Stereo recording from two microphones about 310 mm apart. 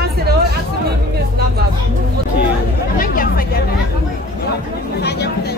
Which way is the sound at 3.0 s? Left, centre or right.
Left.